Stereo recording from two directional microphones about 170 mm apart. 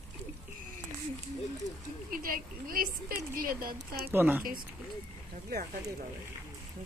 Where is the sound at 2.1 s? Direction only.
60° right (ahead or behind).